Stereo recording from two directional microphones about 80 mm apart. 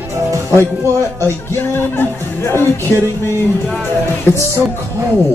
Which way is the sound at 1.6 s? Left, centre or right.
Left.